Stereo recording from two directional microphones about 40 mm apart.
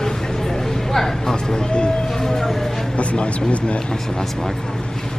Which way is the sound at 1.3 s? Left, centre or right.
Left.